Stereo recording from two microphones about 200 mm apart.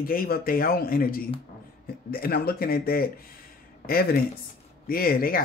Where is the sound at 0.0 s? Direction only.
45° left (ahead or behind).